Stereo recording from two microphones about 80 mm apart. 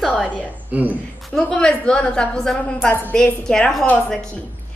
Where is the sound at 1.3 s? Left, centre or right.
Centre.